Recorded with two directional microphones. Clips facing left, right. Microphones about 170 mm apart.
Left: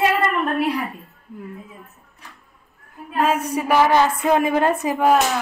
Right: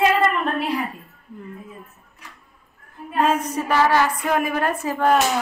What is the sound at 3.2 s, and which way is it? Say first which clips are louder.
A woman's voice: even; 5° left (ahead or behind).